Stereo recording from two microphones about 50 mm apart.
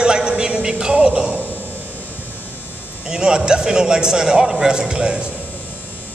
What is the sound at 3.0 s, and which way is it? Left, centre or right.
A man's voice, centre.